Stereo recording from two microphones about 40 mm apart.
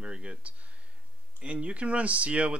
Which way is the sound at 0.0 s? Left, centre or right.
Right.